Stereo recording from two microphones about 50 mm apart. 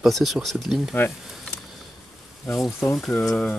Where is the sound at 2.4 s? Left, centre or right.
Left.